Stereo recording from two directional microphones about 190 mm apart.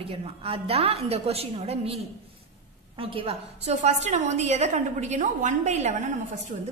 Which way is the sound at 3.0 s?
30° right (ahead or behind).